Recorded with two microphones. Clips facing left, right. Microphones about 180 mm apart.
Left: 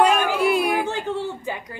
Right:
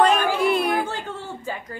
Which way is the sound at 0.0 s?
10° left (ahead or behind).